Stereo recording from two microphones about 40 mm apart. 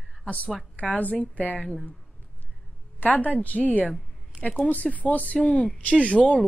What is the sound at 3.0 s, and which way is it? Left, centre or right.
Speech, left.